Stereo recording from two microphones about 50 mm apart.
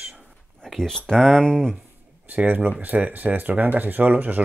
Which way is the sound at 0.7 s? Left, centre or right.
Centre.